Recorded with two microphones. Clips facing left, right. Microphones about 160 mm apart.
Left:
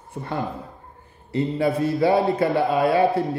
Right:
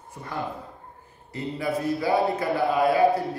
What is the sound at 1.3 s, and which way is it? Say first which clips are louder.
A man's voice: left 6 dB; 30° left (ahead or behind).